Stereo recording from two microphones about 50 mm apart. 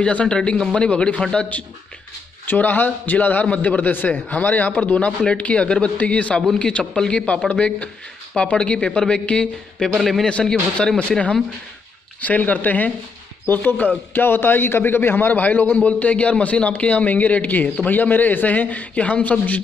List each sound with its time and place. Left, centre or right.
0.0 s speech: left
2.4 s a man's voice: left